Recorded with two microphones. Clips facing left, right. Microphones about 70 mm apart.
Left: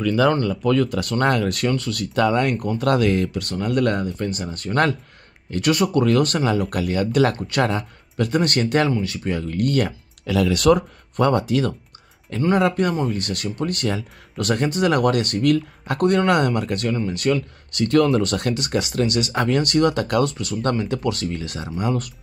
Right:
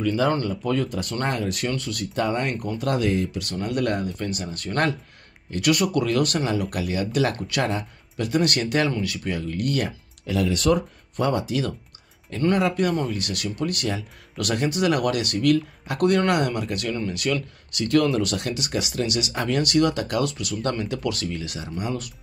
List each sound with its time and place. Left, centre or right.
0.0 s speech: left
0.5 s speech: left
6.0 s speech: left
9.4 s speech: left
10.2 s speech: left